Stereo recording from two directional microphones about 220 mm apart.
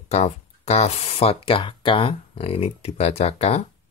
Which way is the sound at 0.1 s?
30° left (ahead or behind).